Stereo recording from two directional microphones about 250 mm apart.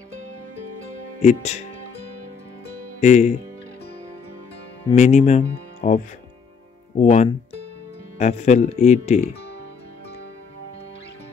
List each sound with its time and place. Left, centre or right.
1.2 s speech: left
3.0 s speech: left
4.8 s speech: left